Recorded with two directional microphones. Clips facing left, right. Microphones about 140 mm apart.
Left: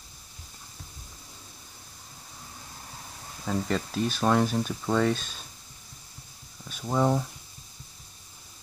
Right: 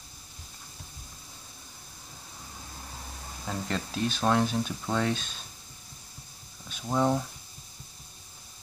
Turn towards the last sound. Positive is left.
turn(degrees=0)  # may be behind; listen again after turning